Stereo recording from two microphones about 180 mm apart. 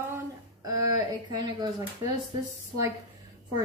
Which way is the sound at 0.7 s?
20° right (ahead or behind).